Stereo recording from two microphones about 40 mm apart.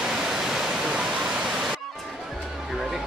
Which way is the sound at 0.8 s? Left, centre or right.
Centre.